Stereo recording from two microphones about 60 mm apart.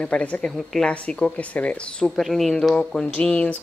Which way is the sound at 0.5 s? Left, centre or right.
Centre.